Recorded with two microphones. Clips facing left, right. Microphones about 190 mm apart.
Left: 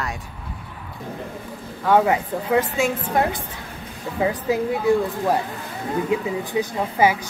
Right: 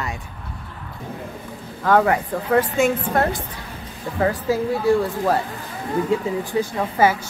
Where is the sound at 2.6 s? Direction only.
Centre (ahead or behind).